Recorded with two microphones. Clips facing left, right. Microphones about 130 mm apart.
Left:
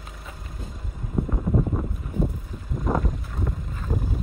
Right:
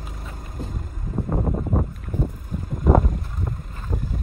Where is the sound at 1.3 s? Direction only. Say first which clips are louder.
Right 3 dB; 35° right (ahead or behind).